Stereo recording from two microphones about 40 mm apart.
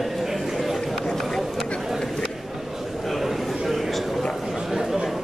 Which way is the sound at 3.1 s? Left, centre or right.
Centre.